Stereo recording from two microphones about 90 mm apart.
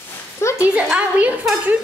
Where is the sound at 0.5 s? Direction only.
15° right (ahead or behind).